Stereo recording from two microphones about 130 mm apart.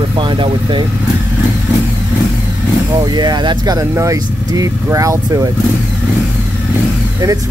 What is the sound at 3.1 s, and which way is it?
Speech, 35° right (ahead or behind).